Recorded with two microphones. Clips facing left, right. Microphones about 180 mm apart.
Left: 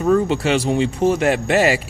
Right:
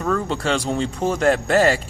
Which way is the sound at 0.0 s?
10° left (ahead or behind).